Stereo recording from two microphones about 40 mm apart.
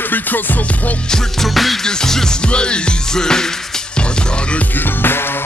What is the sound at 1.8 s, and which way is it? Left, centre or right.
Music, centre.